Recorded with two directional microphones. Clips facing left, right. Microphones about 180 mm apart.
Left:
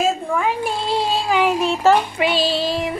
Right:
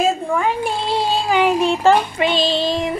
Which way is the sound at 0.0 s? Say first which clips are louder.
Right 2 dB; centre (ahead or behind).